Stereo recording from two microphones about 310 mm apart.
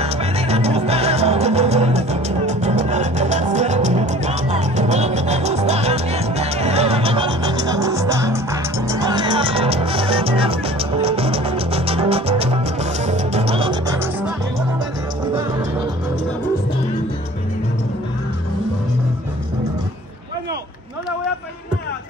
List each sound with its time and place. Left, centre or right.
0.0 s music: centre